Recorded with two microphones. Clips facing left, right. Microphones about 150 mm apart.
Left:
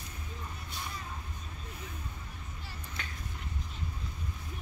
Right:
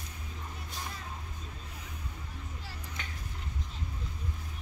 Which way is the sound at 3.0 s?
20° right (ahead or behind).